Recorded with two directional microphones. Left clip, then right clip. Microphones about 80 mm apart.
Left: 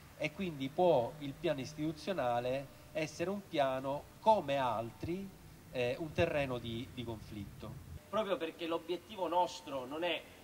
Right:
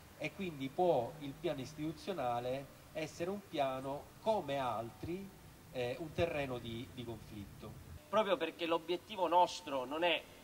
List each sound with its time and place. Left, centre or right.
0.2 s speech: left
8.1 s a man's voice: right